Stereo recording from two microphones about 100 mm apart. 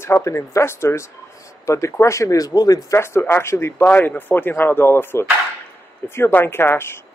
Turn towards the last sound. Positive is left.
turn(degrees=25)  # may be behind; listen again after turning